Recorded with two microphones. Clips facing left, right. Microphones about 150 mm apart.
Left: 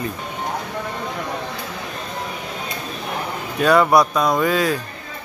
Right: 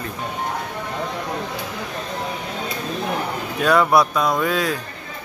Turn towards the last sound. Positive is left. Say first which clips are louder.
# left 2 dB
turn(degrees=0)  # may be behind; listen again after turning